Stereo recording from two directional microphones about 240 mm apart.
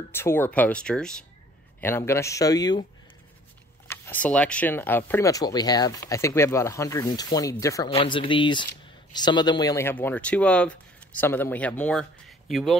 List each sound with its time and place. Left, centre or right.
0.1 s speech: centre
3.8 s speech: centre